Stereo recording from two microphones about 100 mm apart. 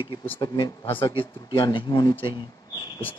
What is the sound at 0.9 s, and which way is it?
Speech, 60° left (ahead or behind).